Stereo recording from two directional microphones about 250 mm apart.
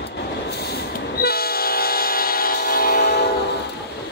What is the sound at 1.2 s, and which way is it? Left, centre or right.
Train, left.